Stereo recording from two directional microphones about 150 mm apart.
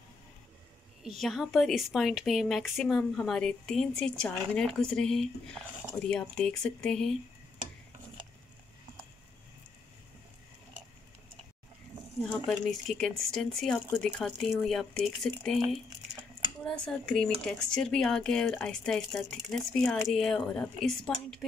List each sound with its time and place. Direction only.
1.0 s speech: centre (ahead or behind)
12.3 s speech: centre (ahead or behind)
16.6 s speech: 5° left (ahead or behind)